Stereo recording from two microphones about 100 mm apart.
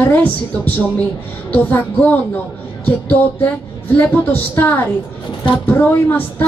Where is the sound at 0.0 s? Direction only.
20° left (ahead or behind).